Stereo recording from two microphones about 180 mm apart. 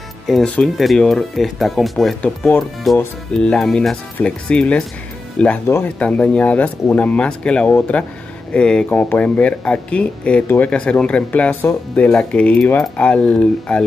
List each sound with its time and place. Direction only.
0.3 s speech: centre (ahead or behind)